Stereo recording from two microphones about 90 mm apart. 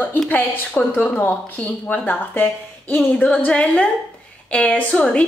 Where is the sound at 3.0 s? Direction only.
10° left (ahead or behind).